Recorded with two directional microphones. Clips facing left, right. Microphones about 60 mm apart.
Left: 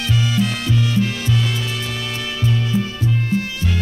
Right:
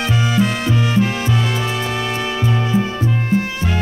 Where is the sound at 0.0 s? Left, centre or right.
Right.